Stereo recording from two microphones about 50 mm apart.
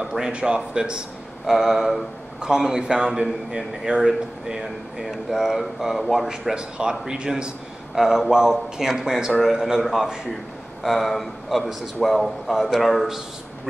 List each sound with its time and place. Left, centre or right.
0.0 s a sound: centre
0.3 s speech: right
1.4 s a man's voice: centre
6.5 s a man's voice: centre